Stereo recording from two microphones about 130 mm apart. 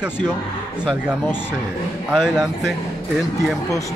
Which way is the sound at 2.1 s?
5° right (ahead or behind).